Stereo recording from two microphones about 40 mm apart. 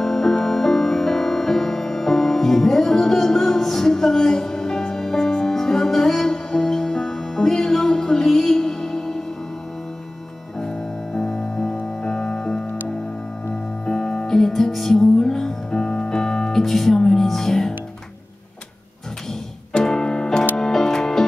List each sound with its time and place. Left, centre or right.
0.0 s music: centre
10.6 s music: centre
13.8 s music: left
14.3 s music: centre
16.6 s music: centre
19.7 s music: centre